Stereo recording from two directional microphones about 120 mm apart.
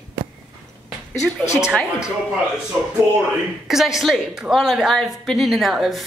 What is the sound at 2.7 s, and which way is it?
Speech, 25° right (ahead or behind).